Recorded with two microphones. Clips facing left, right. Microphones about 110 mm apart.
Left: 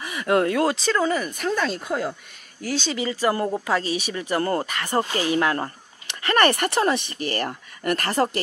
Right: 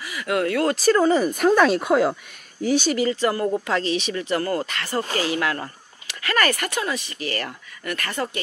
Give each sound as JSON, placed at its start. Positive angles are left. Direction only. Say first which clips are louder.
{"t": 0.0, "sound": "speech", "louder": "left 3 dB", "side_deg": 30}
{"t": 0.7, "sound": "speech", "louder": "right 5 dB", "side_deg": -5}
{"t": 1.3, "sound": "speech", "louder": "right 8 dB", "side_deg": -55}
{"t": 2.6, "sound": "speech", "louder": "right 6 dB", "side_deg": -15}
{"t": 3.1, "sound": "speech", "louder": "right 1 dB", "side_deg": 10}
{"t": 4.4, "sound": "speech", "louder": "left 4 dB", "side_deg": 30}
{"t": 4.7, "sound": "speech", "louder": "left 1 dB", "side_deg": 20}